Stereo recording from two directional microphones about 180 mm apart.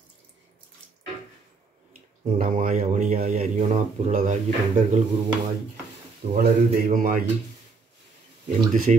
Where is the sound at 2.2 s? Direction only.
45° right (ahead or behind).